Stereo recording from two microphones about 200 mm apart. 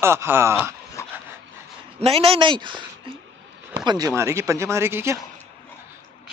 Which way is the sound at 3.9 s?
15° right (ahead or behind).